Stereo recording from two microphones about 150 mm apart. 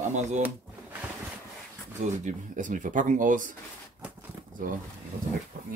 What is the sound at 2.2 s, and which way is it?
Speech, 60° right (ahead or behind).